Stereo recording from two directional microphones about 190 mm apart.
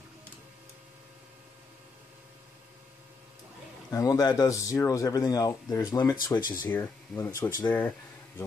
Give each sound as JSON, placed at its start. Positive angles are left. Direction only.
{"t": 3.9, "sound": "speech", "side_deg": 20}
{"t": 6.7, "sound": "speech", "side_deg": 10}